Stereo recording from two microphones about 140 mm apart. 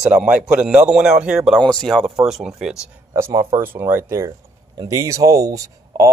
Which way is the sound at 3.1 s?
20° right (ahead or behind).